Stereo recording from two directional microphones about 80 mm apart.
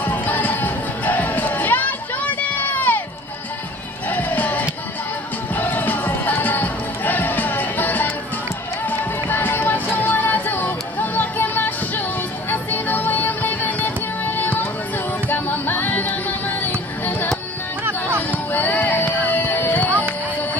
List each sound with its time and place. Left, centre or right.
0.0 s music: left
4.1 s music: left
9.3 s music: left
18.3 s music: left